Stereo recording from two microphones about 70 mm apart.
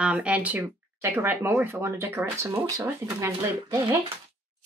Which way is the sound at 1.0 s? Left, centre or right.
Right.